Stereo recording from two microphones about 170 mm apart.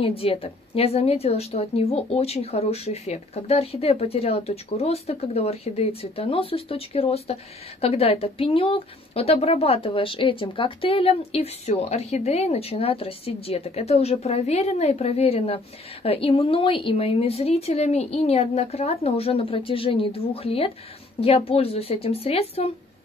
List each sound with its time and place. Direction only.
0.0 s speech: 35° left (ahead or behind)